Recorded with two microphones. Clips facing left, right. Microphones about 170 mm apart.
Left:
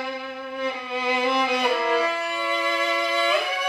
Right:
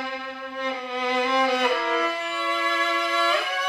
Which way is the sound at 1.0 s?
5° left (ahead or behind).